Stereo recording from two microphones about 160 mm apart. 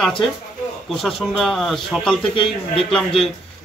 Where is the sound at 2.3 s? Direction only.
35° left (ahead or behind).